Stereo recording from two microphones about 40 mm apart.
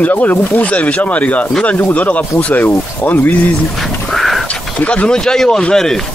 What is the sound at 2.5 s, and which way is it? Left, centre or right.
Speech, left.